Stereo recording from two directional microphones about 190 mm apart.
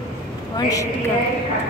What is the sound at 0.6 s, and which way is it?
Speech, 20° left (ahead or behind).